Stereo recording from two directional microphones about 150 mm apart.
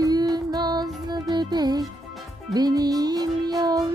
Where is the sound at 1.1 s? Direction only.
25° right (ahead or behind).